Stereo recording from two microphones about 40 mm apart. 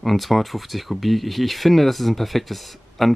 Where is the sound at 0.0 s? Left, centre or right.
Centre.